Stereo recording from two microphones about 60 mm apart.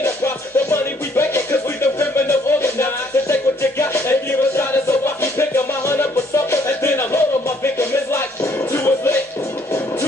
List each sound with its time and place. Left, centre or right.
0.0 s music: left